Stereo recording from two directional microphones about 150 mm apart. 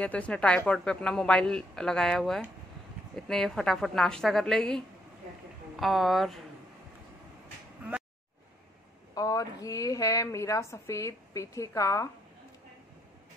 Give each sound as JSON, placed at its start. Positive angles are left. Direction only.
{"t": 0.0, "sound": "a man's voice", "side_deg": 10}
{"t": 9.1, "sound": "a woman's voice", "side_deg": 25}